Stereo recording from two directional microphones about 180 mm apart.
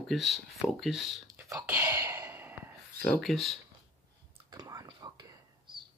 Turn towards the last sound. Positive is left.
turn(degrees=-25)  # may be behind; listen again after turning